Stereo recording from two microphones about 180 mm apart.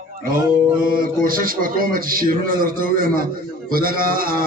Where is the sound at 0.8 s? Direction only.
50° right (ahead or behind).